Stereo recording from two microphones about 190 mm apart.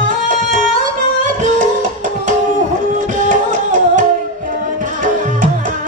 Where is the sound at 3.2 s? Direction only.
40° right (ahead or behind).